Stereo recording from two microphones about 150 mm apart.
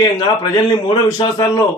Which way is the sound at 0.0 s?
25° left (ahead or behind).